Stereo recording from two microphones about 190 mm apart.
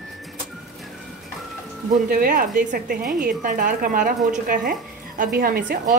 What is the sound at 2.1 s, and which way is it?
Speech, 50° right (ahead or behind).